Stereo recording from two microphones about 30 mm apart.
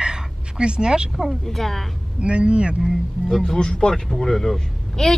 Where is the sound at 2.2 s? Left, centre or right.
Right.